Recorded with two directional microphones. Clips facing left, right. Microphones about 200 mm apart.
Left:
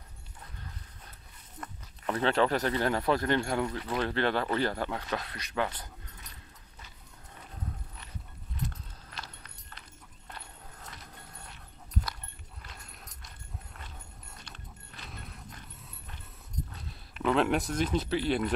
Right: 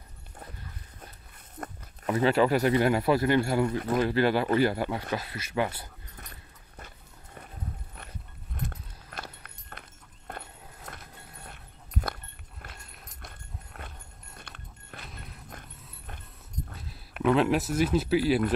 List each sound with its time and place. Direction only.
1.6 s a sound: 50° right (ahead or behind)
2.0 s speech: 5° right (ahead or behind)
3.6 s speech: 50° right (ahead or behind)
4.0 s speech: 5° right (ahead or behind)
8.5 s horse: 55° right (ahead or behind)
11.4 s dog: 55° right (ahead or behind)
12.6 s horse: 55° right (ahead or behind)
14.4 s a sound: 55° right (ahead or behind)
17.2 s speech: 5° right (ahead or behind)